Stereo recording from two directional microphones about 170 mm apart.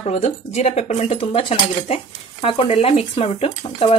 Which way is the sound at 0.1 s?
40° left (ahead or behind).